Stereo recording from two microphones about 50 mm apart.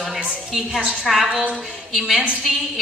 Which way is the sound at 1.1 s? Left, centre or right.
Centre.